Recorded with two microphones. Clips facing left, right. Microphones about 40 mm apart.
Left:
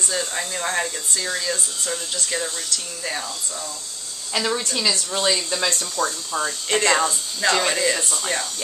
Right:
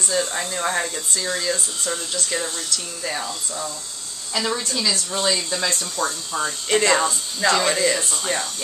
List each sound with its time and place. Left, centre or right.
0.3 s speech: centre
3.2 s speech: centre
4.4 s a woman's voice: centre
5.7 s speech: centre